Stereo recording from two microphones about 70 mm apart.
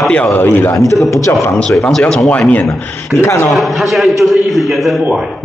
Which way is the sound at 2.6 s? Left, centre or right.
Left.